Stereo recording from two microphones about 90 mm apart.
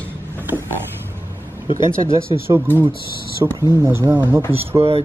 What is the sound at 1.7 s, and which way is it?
Speech, 65° left (ahead or behind).